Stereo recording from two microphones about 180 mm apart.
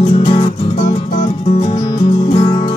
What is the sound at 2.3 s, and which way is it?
Music, 30° left (ahead or behind).